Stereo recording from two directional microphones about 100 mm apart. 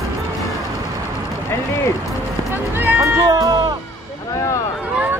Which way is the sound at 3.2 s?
40° right (ahead or behind).